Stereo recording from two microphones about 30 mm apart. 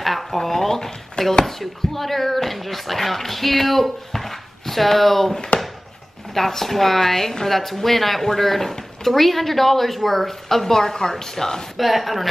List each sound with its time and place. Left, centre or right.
0.0 s speech: centre
1.4 s speech: centre
5.5 s a sound: left
6.3 s speech: centre
11.7 s speech: centre